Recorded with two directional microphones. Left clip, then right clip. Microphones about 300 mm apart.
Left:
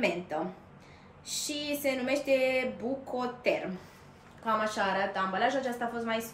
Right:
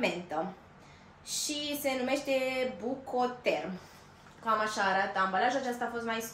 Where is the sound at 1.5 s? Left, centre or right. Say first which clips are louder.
Left 2 dB; centre.